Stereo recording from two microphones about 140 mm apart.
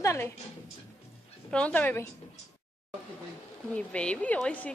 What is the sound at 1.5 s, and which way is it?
Speech, 10° left (ahead or behind).